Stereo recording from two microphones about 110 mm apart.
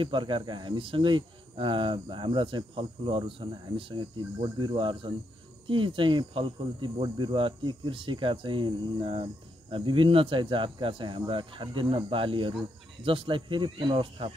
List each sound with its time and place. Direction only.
0.0 s speech: 50° right (ahead or behind)